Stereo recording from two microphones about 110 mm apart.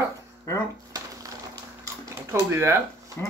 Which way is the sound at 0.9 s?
35° right (ahead or behind).